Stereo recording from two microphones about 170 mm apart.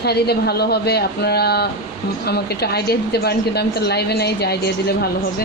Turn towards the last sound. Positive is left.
turn(degrees=70)  # may be behind; listen again after turning